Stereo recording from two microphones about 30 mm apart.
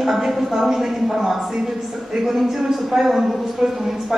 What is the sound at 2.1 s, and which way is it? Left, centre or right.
A man's voice, centre.